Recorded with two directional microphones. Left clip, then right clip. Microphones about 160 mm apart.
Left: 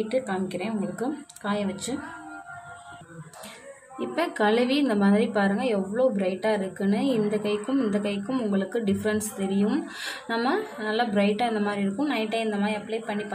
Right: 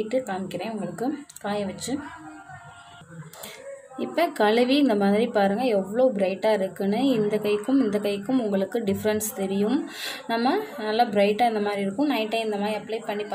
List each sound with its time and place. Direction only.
0.1 s a woman's voice: 5° right (ahead or behind)
4.0 s a woman's voice: 20° right (ahead or behind)